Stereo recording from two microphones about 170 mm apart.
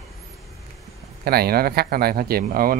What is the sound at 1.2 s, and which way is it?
Speech, 65° right (ahead or behind).